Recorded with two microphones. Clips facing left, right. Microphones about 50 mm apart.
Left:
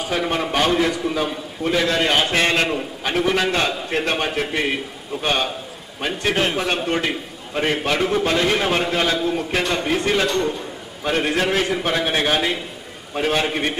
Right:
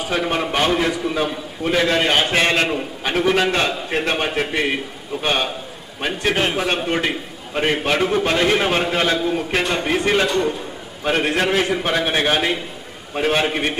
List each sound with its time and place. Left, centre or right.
0.3 s a man's voice: centre
3.0 s a man's voice: centre